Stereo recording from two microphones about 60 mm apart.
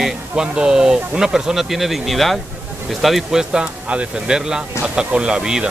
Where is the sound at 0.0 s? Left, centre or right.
Centre.